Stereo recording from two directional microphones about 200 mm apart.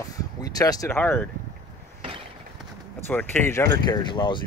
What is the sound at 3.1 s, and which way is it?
Speech, 10° left (ahead or behind).